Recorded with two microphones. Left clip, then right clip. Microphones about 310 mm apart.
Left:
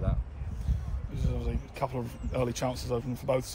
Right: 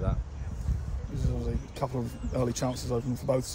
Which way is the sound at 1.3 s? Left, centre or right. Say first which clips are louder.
Right 1 dB; left.